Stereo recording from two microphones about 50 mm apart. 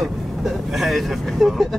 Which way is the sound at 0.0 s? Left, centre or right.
Centre.